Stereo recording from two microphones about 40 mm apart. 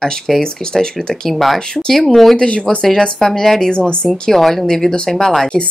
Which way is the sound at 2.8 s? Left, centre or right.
Centre.